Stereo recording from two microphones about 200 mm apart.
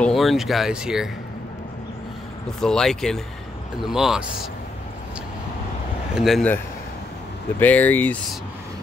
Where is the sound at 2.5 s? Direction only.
5° left (ahead or behind).